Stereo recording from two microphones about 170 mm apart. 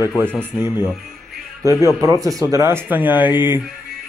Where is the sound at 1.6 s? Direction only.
20° right (ahead or behind).